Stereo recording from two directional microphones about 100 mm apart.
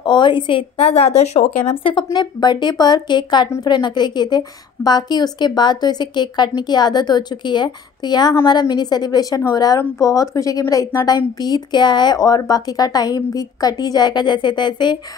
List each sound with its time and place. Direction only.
0.0 s a woman's voice: 50° left (ahead or behind); by 2.0 s 65° left (ahead or behind)
2.1 s a woman's voice: 45° left (ahead or behind); by 11.1 s 30° left (ahead or behind)
11.1 s a woman's voice: 45° left (ahead or behind)